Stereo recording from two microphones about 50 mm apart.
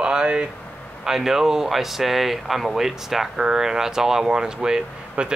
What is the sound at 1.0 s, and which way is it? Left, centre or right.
Speech, centre.